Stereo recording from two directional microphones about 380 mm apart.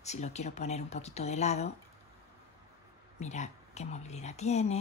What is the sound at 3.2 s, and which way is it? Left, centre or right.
Speech, centre.